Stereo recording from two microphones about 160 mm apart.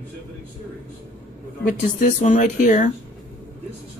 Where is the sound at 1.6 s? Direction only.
50° left (ahead or behind).